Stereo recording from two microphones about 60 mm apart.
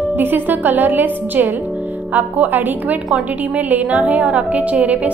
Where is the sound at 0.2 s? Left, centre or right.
Right.